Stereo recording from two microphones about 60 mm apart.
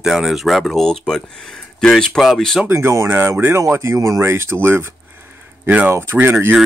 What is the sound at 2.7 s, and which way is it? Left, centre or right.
Speech, right.